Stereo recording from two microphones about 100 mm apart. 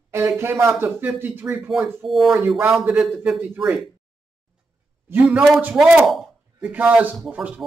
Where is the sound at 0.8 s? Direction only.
20° right (ahead or behind).